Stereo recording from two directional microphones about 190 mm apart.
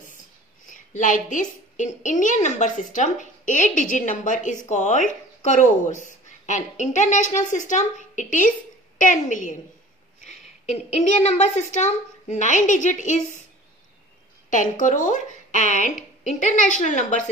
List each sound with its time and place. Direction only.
0.7 s a woman's voice: 40° left (ahead or behind)
14.5 s a woman's voice: 40° left (ahead or behind)